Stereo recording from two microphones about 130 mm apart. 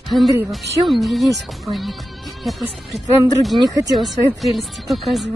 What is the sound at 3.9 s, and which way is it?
Speech, centre (ahead or behind).